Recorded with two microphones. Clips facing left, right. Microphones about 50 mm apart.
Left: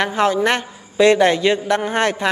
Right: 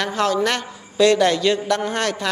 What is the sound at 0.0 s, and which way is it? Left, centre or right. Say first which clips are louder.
A woman's voice: left 3 dB; left.